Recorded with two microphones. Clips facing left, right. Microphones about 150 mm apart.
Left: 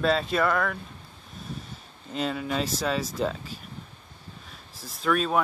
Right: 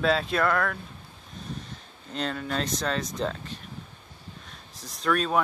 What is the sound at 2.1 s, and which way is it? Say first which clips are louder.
Speech: left 2 dB; 5° left (ahead or behind).